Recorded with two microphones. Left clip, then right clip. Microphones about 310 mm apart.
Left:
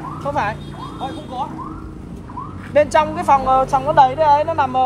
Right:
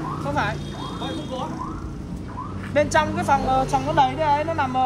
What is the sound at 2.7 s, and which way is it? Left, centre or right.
Speech, centre.